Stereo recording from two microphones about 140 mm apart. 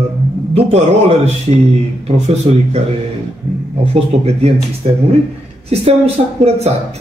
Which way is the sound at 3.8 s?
50° right (ahead or behind).